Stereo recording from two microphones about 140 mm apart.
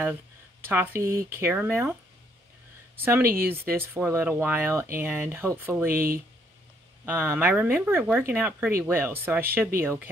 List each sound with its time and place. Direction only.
0.7 s speech: 15° right (ahead or behind)
3.0 s speech: 15° right (ahead or behind)
7.1 s speech: 15° right (ahead or behind)